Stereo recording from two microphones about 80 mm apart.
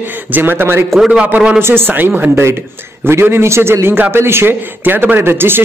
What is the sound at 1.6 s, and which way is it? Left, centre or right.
A man's voice, right.